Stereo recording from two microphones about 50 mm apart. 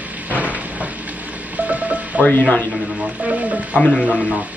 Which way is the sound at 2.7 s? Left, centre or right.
Right.